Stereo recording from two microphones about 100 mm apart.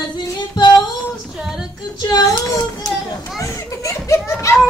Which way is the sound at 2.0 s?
40° left (ahead or behind).